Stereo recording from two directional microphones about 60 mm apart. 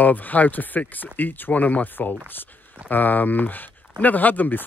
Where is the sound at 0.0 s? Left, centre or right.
Left.